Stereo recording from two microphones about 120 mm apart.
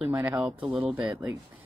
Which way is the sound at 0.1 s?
15° right (ahead or behind).